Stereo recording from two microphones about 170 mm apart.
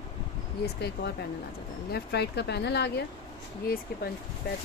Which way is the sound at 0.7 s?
75° left (ahead or behind).